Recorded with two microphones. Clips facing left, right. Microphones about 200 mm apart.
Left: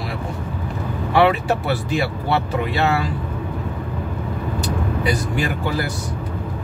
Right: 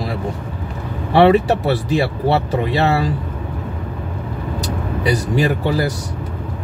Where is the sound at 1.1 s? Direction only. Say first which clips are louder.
Right 5 dB; 35° right (ahead or behind).